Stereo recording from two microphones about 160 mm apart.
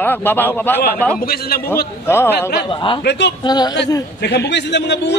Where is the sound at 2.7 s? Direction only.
30° left (ahead or behind).